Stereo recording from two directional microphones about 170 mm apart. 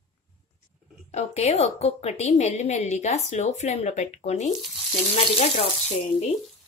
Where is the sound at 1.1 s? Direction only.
40° left (ahead or behind).